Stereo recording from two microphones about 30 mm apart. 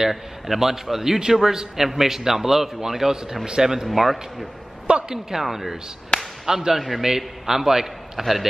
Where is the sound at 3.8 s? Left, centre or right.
Centre.